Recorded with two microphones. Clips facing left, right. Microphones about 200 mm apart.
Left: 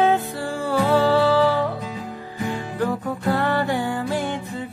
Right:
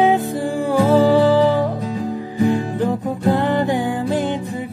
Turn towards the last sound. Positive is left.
turn(degrees=-15)  # may be behind; listen again after turning